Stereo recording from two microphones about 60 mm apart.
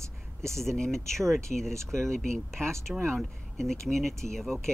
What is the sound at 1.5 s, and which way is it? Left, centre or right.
Speech, centre.